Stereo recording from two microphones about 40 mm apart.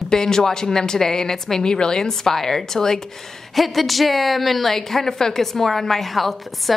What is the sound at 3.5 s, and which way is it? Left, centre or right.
A woman's voice, centre.